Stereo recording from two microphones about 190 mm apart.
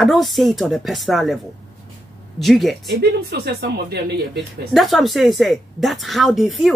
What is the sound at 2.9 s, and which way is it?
Speech, 55° right (ahead or behind).